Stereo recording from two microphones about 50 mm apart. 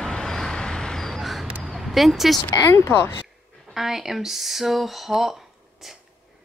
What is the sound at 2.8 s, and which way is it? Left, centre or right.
Speech, left.